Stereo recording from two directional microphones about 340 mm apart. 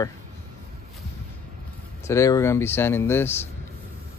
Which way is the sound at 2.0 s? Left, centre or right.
Centre.